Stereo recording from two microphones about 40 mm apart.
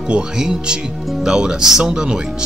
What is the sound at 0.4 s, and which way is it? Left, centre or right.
A man's voice, centre.